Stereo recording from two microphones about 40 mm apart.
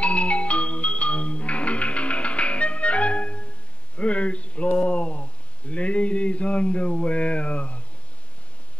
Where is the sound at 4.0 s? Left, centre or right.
Left.